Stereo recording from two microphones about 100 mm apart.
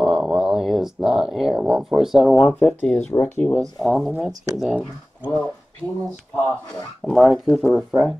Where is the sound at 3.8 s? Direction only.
Centre (ahead or behind).